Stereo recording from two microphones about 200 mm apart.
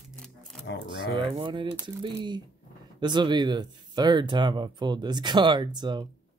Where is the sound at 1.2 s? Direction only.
25° right (ahead or behind).